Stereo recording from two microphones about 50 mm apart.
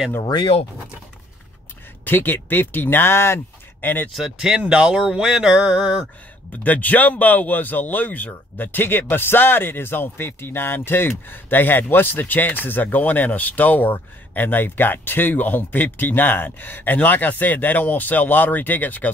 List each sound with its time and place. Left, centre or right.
2.0 s speech: left
3.8 s speech: left
4.1 s speech: centre
6.5 s speech: left